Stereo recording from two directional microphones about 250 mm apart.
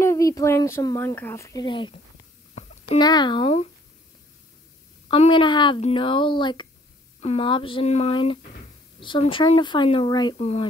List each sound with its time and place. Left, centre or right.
0.0 s a child's voice: centre
5.1 s speech: left